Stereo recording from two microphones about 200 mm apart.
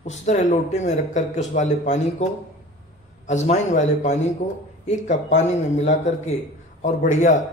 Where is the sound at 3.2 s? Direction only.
35° left (ahead or behind).